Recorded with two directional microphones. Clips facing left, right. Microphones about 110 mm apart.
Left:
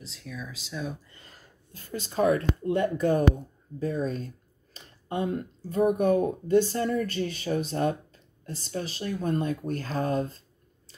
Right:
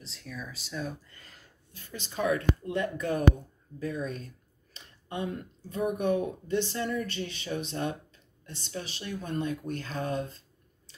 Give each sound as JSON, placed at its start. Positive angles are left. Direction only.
{"t": 0.0, "sound": "speech", "side_deg": 0}
{"t": 1.0, "sound": "speech", "side_deg": 20}
{"t": 1.3, "sound": "speech", "side_deg": 40}